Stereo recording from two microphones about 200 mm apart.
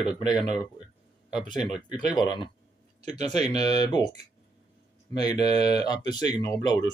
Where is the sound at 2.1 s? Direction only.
20° left (ahead or behind).